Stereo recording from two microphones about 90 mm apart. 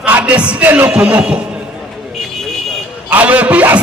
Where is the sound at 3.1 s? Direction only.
15° right (ahead or behind).